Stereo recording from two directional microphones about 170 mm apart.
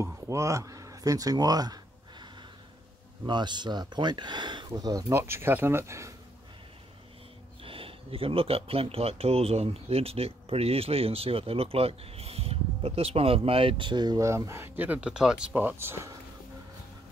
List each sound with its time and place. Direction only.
0.0 s a sound: 15° right (ahead or behind)
3.3 s speech: 25° right (ahead or behind)
7.6 s speech: 30° right (ahead or behind); by 16.2 s 15° right (ahead or behind)